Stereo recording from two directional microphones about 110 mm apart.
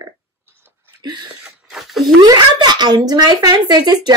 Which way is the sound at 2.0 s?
40° right (ahead or behind).